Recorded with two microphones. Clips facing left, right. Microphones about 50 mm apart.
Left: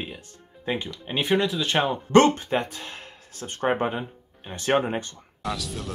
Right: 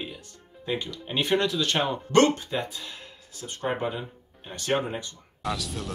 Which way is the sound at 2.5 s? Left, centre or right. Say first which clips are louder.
Left 4 dB; left.